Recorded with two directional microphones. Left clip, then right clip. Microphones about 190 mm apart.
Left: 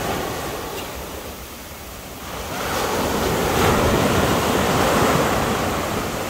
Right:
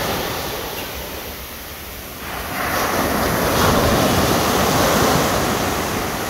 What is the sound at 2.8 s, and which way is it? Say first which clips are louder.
Train: right 1 dB; 55° left (ahead or behind).